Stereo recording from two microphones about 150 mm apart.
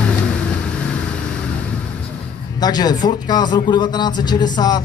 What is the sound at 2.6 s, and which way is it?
Speech, 25° left (ahead or behind).